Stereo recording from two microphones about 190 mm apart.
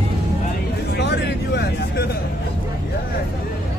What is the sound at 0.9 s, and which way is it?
Vehicle, 60° left (ahead or behind).